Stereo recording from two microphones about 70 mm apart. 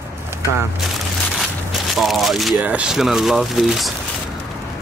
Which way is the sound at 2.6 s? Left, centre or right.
Centre.